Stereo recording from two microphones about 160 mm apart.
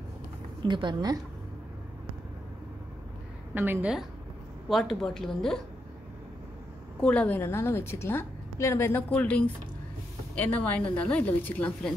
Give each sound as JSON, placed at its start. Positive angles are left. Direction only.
{"t": 0.6, "sound": "speech", "side_deg": -30}
{"t": 3.5, "sound": "a woman's voice", "side_deg": -10}
{"t": 4.6, "sound": "a woman's voice", "side_deg": 0}
{"t": 7.0, "sound": "a woman's voice", "side_deg": 10}